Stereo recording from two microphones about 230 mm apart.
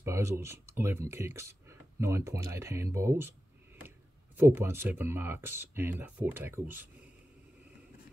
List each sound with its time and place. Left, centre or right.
0.0 s speech: centre
4.4 s speech: centre